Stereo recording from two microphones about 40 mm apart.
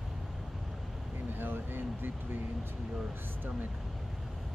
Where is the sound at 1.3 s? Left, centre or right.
Right.